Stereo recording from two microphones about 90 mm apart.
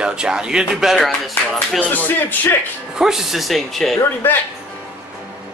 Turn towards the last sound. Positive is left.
turn(degrees=25)  # may be behind; listen again after turning